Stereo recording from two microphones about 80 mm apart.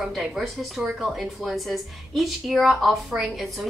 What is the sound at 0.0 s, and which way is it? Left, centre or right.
A woman's voice, centre.